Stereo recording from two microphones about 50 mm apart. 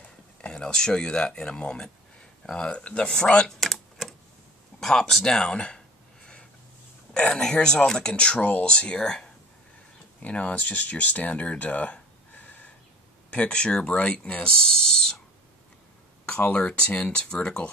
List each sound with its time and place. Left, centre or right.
0.0 s speech: left
3.4 s typing: centre
4.7 s speech: centre
7.2 s speech: centre; by 12.7 s left
13.3 s speech: centre
16.3 s speech: left